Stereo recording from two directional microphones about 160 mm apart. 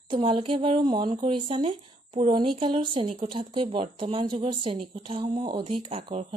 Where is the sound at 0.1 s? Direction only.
35° right (ahead or behind).